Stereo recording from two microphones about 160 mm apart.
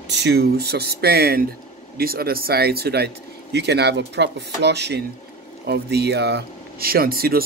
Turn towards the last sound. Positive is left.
turn(degrees=-70)  # may be behind; listen again after turning